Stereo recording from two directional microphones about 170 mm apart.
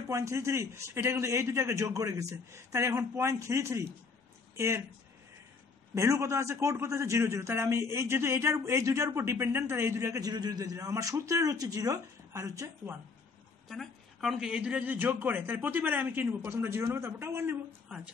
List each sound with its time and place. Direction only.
0.1 s a man's voice: 15° right (ahead or behind)
5.9 s a man's voice: 15° right (ahead or behind)
13.7 s a man's voice: centre (ahead or behind)